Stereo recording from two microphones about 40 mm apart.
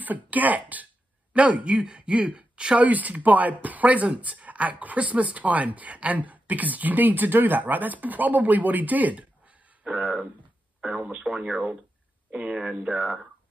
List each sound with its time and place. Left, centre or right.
0.0 s speech: right
2.8 s speech: right